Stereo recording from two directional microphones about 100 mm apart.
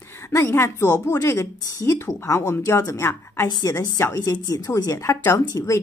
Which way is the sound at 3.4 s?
40° left (ahead or behind).